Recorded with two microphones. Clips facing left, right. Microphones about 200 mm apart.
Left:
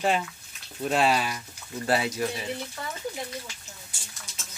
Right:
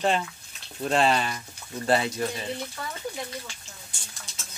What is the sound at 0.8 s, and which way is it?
Speech, 5° left (ahead or behind).